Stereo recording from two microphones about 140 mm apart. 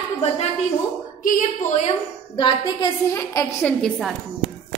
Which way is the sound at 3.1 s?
20° left (ahead or behind).